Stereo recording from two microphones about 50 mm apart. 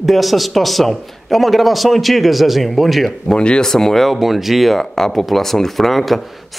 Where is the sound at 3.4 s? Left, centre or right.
Centre.